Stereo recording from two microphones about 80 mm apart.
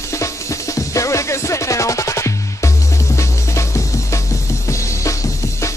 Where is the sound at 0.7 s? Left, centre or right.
Left.